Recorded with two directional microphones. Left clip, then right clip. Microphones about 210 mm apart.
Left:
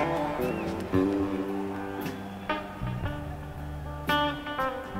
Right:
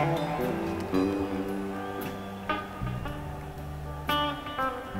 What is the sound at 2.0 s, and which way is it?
Music, 45° right (ahead or behind).